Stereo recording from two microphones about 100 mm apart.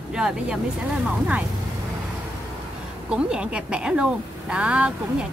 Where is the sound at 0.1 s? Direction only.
5° right (ahead or behind).